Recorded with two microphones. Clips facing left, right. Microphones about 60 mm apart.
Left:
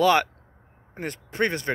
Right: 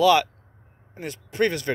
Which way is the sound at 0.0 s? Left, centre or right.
Left.